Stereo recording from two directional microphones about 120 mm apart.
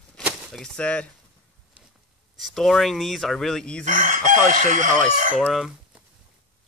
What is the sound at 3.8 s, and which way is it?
Chicken, 90° right.